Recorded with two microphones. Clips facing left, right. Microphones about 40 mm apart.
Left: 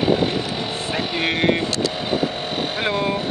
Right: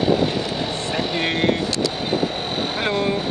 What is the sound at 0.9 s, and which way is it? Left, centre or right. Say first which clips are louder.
Speech: left 1 dB; centre.